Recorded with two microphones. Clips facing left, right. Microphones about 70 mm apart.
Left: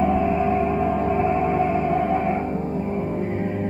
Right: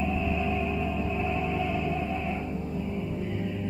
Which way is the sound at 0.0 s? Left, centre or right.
Left.